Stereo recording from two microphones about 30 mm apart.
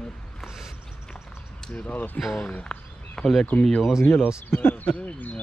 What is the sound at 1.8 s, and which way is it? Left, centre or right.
Speech, left.